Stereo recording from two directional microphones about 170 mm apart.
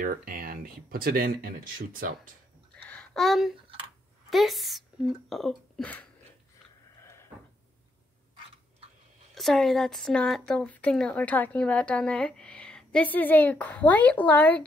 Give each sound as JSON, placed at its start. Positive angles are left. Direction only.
{"t": 0.0, "sound": "speech", "side_deg": -55}
{"t": 2.8, "sound": "a sound", "side_deg": 5}
{"t": 4.3, "sound": "speech", "side_deg": 0}
{"t": 9.3, "sound": "speech", "side_deg": 0}